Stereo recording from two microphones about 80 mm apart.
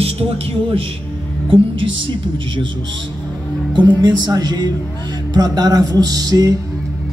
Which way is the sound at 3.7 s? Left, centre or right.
Right.